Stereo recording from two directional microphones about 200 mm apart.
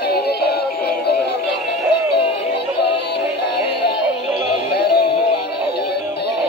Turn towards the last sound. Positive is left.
turn(degrees=55)  # may be behind; listen again after turning